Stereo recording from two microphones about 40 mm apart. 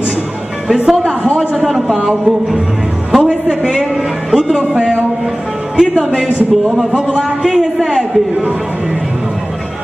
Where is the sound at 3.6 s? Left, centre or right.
Centre.